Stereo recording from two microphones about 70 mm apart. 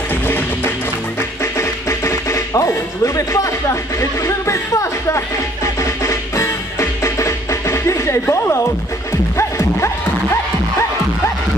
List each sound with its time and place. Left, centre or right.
0.1 s music: left